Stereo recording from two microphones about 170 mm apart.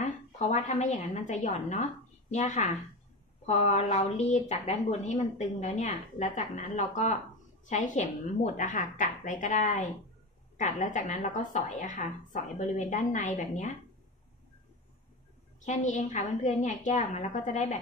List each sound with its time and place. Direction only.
0.0 s a woman's voice: 40° left (ahead or behind)
15.6 s a woman's voice: 45° left (ahead or behind)